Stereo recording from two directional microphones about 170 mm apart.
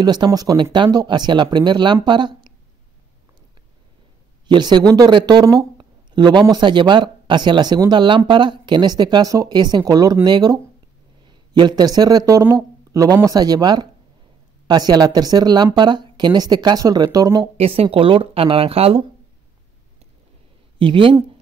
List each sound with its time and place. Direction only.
0.0 s speech: 25° right (ahead or behind)
4.5 s speech: 25° right (ahead or behind)
17.6 s speech: 35° right (ahead or behind)
20.8 s speech: 30° right (ahead or behind)